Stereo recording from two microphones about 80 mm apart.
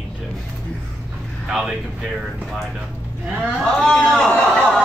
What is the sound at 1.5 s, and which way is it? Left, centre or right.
Speech, centre.